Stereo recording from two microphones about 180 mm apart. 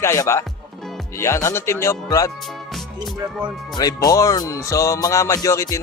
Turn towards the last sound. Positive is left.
turn(degrees=15)  # may be behind; listen again after turning